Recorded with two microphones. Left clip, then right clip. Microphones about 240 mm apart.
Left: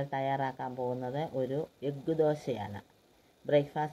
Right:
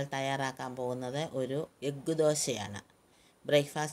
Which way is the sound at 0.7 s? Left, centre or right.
Right.